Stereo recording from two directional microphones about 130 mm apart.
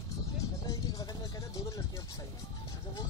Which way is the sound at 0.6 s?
25° left (ahead or behind).